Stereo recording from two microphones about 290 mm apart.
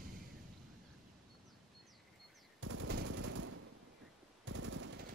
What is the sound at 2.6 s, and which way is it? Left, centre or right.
Machine gun, right.